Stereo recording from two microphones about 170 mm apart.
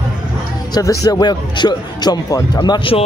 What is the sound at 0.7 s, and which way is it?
Speech, 20° left (ahead or behind).